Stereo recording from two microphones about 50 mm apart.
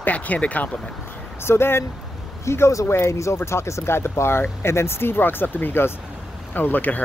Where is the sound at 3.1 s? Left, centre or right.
Left.